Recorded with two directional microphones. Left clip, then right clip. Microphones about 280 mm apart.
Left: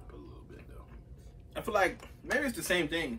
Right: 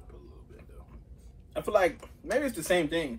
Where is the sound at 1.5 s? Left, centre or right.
Centre.